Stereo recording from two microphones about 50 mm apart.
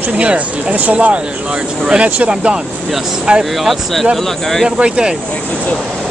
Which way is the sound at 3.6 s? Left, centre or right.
Centre.